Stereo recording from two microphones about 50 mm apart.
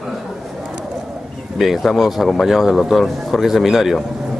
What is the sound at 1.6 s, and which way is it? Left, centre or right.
A man's voice, centre.